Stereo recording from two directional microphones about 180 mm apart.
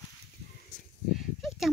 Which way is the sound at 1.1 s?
Centre (ahead or behind).